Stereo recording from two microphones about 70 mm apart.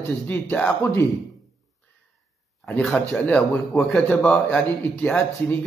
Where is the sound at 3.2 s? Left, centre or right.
Centre.